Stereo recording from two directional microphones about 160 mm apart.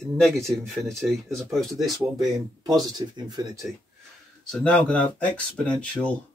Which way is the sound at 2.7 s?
25° right (ahead or behind).